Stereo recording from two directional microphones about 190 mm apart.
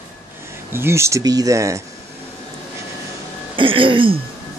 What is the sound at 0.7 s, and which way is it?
Speech, 15° right (ahead or behind).